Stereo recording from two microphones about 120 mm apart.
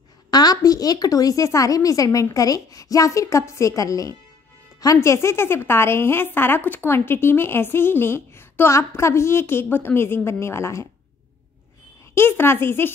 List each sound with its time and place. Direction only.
0.3 s speech: 35° left (ahead or behind)
12.1 s speech: 20° left (ahead or behind)